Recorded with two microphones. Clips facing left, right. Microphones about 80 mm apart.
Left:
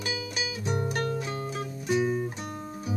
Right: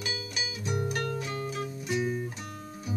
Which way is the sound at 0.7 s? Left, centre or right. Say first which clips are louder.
Left 2 dB; left.